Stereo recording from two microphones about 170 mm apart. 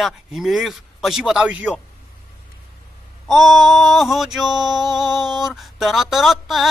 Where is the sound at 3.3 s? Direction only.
Centre (ahead or behind).